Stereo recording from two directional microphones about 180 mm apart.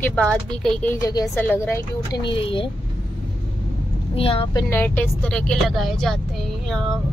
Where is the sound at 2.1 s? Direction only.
30° left (ahead or behind).